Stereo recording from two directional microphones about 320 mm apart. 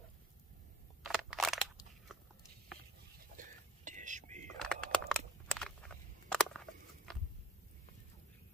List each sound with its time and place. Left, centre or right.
1.0 s crushing: centre
3.3 s whispering: right
4.6 s a sound: centre